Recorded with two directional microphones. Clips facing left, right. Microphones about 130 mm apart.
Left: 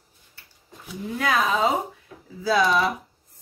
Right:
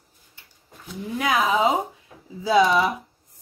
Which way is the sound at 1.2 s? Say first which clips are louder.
Right 1 dB; 15° right (ahead or behind).